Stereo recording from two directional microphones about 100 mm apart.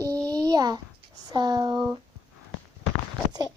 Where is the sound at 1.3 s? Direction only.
45° right (ahead or behind).